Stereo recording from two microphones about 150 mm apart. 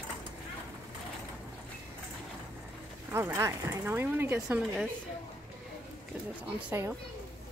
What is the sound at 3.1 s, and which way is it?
Speech, 20° right (ahead or behind).